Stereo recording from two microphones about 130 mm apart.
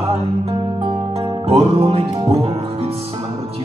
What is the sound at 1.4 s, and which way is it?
Music, 50° right (ahead or behind).